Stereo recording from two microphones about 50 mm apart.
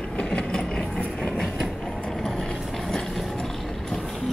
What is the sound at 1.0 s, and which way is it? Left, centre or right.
Train, left.